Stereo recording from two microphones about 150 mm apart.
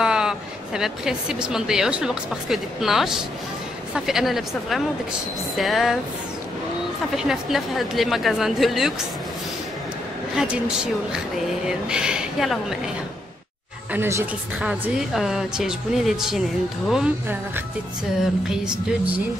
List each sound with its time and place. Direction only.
0.0 s a woman's voice: 5° right (ahead or behind)
7.2 s speech: centre (ahead or behind)
10.3 s speech: 5° right (ahead or behind)
13.9 s speech: 15° right (ahead or behind)
14.7 s speech: 5° right (ahead or behind)
18.7 s speech: 10° right (ahead or behind)